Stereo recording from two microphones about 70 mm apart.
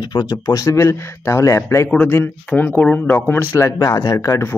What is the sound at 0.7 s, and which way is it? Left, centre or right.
Speech, left.